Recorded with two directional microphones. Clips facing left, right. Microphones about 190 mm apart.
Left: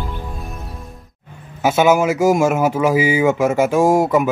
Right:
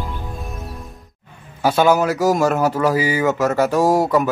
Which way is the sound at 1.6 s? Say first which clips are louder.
Left 1 dB; 10° left (ahead or behind).